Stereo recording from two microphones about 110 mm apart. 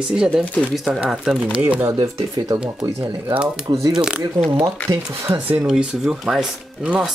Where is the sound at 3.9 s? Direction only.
5° right (ahead or behind).